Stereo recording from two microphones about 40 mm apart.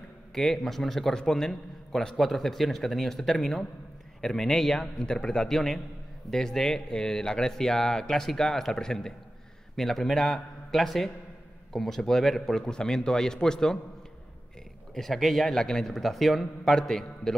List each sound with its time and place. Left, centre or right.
0.3 s speech: centre
4.9 s speech: centre
5.5 s speech: centre
9.8 s speech: centre
15.0 s speech: centre
15.9 s speech: centre